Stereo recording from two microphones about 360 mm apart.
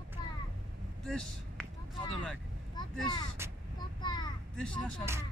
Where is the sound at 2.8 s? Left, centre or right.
Centre.